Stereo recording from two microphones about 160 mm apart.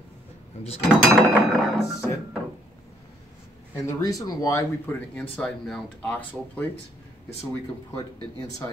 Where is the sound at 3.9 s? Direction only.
20° left (ahead or behind).